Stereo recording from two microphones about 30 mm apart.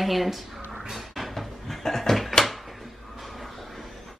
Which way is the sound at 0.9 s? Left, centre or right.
Centre.